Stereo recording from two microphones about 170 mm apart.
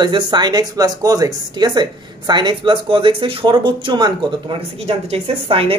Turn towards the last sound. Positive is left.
turn(degrees=-35)  # may be behind; listen again after turning